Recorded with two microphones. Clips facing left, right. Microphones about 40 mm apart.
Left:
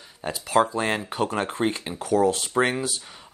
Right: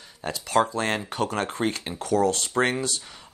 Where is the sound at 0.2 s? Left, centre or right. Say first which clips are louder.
Left 1 dB; centre.